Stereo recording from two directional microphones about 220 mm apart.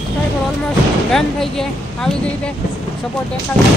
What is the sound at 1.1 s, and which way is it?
Speech, centre (ahead or behind).